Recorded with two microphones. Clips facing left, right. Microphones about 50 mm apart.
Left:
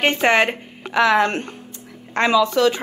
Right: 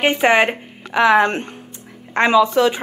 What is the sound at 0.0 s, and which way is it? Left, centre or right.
A woman's voice, centre.